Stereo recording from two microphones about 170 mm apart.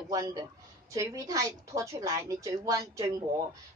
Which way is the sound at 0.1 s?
20° right (ahead or behind).